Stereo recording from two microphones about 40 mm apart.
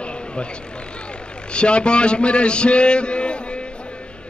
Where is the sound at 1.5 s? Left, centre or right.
Left.